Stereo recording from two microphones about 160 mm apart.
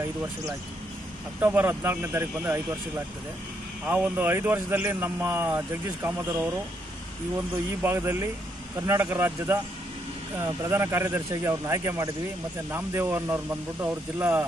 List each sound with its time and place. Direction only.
1.4 s speech: 10° right (ahead or behind)
3.8 s speech: 10° right (ahead or behind)
7.5 s speech: 15° right (ahead or behind)